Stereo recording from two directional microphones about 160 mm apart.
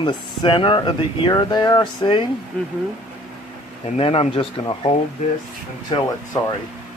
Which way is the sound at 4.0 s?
35° left (ahead or behind).